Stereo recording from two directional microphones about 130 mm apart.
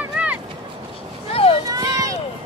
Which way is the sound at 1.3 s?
45° left (ahead or behind).